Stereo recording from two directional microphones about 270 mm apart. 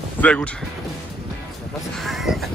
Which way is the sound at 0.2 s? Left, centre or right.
Centre.